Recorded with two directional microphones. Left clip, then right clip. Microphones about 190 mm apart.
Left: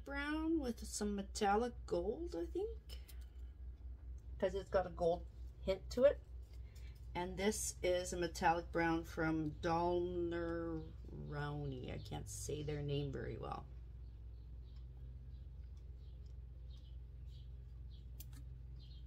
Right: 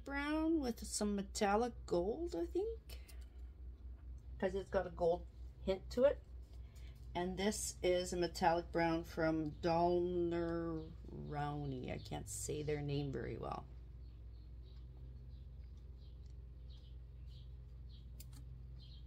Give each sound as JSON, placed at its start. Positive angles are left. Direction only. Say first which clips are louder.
{"t": 0.0, "sound": "speech", "louder": "right 3 dB", "side_deg": -35}
{"t": 4.4, "sound": "a woman's voice", "louder": "left 1 dB", "side_deg": -15}
{"t": 7.1, "sound": "a woman's voice", "louder": "even", "side_deg": -25}